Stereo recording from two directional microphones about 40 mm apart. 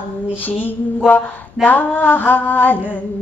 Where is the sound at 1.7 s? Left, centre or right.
Left.